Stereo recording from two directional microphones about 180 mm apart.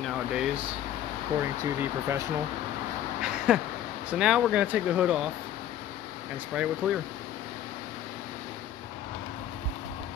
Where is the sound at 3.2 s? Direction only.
5° right (ahead or behind).